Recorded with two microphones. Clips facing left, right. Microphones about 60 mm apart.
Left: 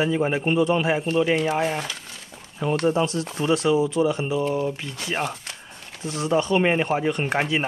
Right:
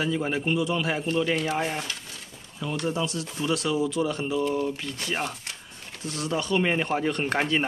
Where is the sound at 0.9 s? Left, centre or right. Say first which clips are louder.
Left 4 dB; centre.